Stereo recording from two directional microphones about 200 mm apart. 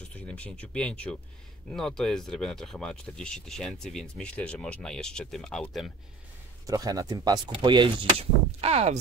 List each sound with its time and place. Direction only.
0.1 s speech: 5° left (ahead or behind)
6.6 s speech: 15° right (ahead or behind)